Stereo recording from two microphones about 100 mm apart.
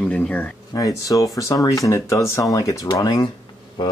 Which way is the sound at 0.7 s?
35° left (ahead or behind).